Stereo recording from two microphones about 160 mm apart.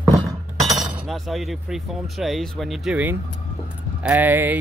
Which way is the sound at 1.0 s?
Centre (ahead or behind).